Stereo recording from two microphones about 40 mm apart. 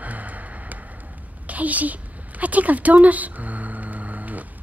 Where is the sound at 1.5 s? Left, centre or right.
Right.